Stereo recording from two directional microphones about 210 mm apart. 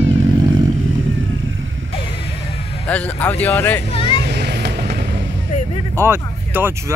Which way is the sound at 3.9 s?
25° left (ahead or behind).